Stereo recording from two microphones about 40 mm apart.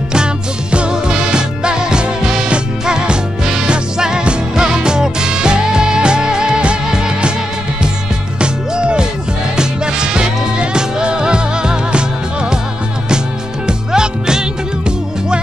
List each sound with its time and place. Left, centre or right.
0.1 s music: right
8.4 s music: right
13.7 s music: centre